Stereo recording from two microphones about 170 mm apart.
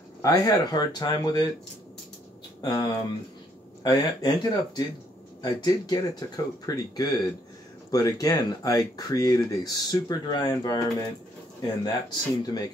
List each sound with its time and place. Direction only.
0.2 s speech: 20° left (ahead or behind)
2.6 s speech: 20° left (ahead or behind)